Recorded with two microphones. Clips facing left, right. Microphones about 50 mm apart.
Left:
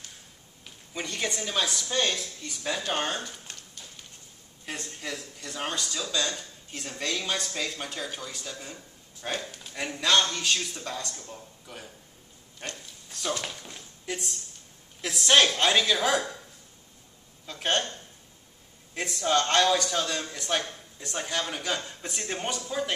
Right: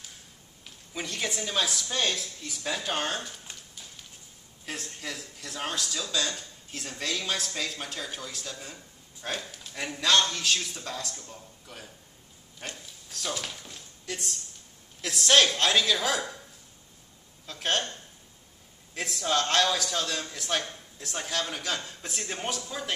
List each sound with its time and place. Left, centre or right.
0.7 s a woman's voice: centre
17.5 s a man's voice: centre
18.9 s a man's voice: centre